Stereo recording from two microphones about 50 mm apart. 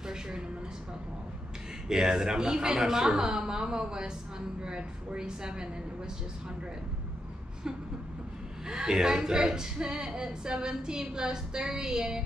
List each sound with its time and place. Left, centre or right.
0.0 s a sound: centre
1.9 s a woman's voice: centre
8.6 s a woman's voice: centre